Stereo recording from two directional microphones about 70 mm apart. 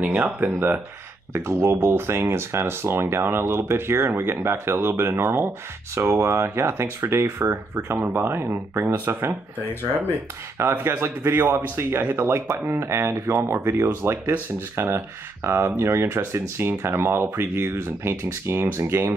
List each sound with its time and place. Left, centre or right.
0.0 s speech: right
1.3 s speech: right
10.6 s speech: right